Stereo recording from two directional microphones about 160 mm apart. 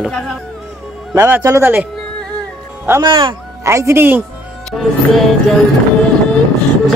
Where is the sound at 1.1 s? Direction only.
15° right (ahead or behind).